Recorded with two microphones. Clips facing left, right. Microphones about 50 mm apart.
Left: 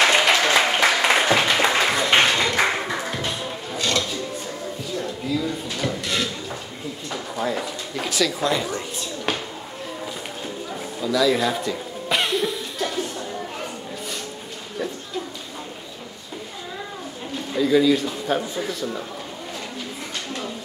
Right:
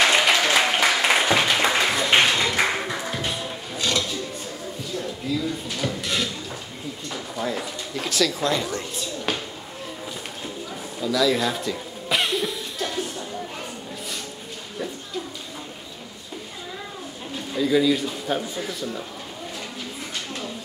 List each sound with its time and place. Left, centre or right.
0.0 s applause: centre
3.2 s a sound: centre
11.0 s chuckle: centre
17.5 s a man's voice: centre